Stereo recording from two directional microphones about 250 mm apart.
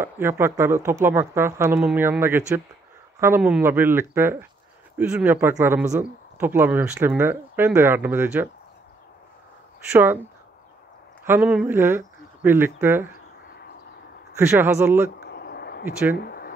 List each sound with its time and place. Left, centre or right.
0.0 s speech: centre
9.9 s speech: centre
11.2 s speech: centre
14.5 s speech: centre
15.1 s a sound: left
15.8 s speech: centre
16.3 s a sound: left